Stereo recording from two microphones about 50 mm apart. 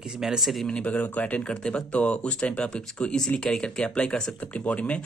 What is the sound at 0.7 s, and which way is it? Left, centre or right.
Speech, left.